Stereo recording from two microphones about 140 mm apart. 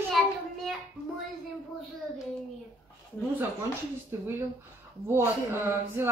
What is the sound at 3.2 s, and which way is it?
Child singing, 10° left (ahead or behind).